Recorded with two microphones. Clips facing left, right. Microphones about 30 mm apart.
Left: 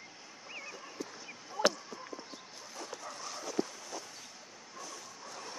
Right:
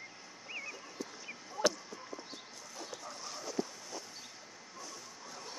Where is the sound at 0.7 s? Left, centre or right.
Centre.